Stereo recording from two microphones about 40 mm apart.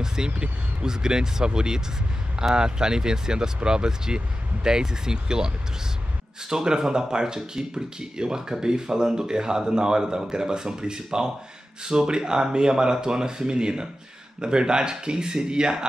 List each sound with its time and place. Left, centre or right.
0.0 s a sound: centre
0.3 s speech: right
0.8 s speech: centre
6.5 s speech: centre